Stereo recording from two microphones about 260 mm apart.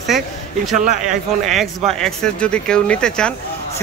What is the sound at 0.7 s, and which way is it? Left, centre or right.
Speech, right.